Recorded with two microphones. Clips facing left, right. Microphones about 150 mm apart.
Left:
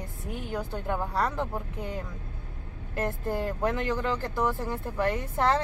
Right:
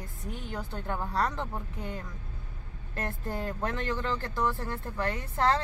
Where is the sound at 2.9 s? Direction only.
10° left (ahead or behind).